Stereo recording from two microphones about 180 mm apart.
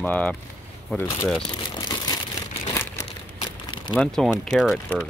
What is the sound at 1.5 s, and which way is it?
Crumpling, 20° left (ahead or behind).